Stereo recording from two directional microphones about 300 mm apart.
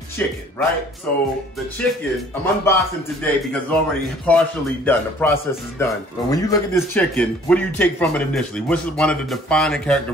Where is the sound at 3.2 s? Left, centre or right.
Centre.